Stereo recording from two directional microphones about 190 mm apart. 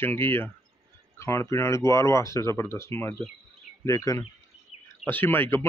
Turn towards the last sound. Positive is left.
turn(degrees=10)  # may be behind; listen again after turning